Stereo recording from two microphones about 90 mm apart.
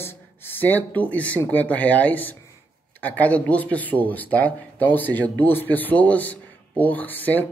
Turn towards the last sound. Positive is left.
turn(degrees=20)  # may be behind; listen again after turning